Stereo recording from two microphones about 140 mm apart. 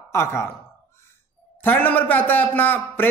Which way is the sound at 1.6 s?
15° left (ahead or behind).